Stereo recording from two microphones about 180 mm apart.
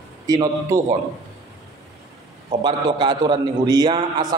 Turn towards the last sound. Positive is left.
turn(degrees=-25)  # may be behind; listen again after turning